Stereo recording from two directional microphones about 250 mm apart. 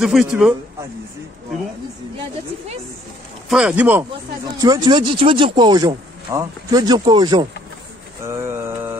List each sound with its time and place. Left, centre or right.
0.0 s speech: centre
3.4 s speech: centre
8.2 s mantra: centre